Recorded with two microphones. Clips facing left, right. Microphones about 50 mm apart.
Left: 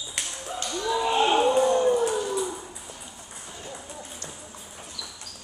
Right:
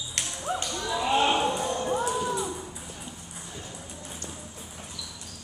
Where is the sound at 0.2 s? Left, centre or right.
Centre.